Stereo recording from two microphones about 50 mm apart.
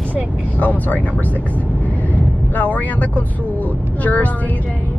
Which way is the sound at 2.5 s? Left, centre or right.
Left.